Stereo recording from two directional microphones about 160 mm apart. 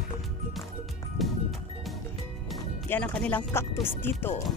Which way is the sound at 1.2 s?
Centre (ahead or behind).